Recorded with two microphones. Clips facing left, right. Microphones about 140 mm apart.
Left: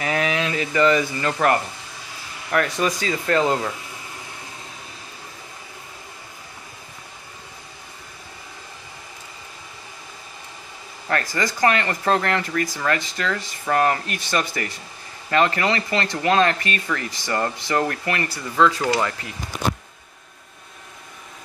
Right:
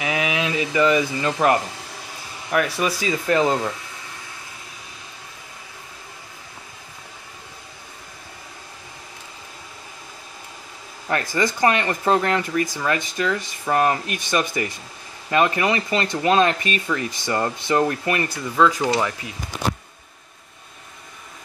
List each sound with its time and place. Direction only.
0.0 s speech: 10° right (ahead or behind)
11.1 s speech: 15° right (ahead or behind)